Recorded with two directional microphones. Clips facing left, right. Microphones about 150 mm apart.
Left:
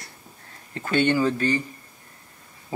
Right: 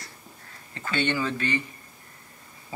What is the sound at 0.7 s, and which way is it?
Speech, 45° left (ahead or behind).